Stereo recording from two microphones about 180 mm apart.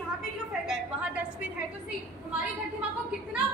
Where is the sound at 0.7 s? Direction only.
5° right (ahead or behind).